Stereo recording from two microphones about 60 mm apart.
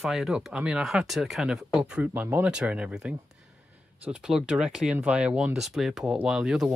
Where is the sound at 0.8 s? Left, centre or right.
Centre.